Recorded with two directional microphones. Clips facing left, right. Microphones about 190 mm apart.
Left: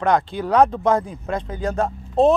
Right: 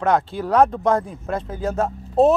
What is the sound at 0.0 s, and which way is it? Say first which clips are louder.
Speech: even; 5° right (ahead or behind).